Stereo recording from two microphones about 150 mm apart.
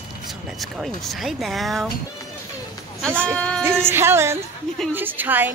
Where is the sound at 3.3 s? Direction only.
5° left (ahead or behind).